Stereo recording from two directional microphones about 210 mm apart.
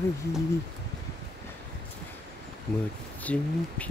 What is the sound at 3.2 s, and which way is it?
Speech, 5° left (ahead or behind).